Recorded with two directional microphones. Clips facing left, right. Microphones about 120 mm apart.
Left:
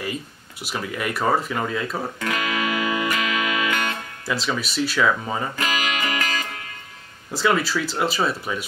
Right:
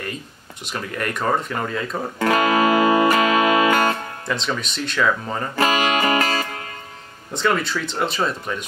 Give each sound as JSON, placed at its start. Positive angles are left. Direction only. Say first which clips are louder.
{"t": 0.7, "sound": "speech", "louder": "even", "side_deg": 5}
{"t": 2.1, "sound": "music", "louder": "right 12 dB", "side_deg": -40}
{"t": 4.3, "sound": "speech", "louder": "even", "side_deg": 5}
{"t": 5.6, "sound": "music", "louder": "right 7 dB", "side_deg": -40}
{"t": 7.3, "sound": "speech", "louder": "even", "side_deg": 5}